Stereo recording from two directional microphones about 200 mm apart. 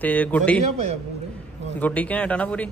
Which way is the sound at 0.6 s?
35° right (ahead or behind).